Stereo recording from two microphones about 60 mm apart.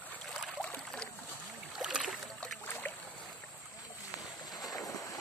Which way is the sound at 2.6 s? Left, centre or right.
Left.